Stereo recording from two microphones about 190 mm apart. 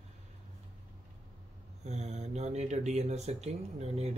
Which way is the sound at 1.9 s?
35° right (ahead or behind).